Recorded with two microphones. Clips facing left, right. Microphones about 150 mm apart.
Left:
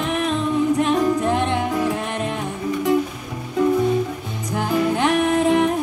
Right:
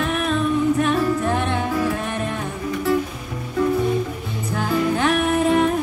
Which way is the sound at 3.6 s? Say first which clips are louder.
Left 2 dB; 20° left (ahead or behind).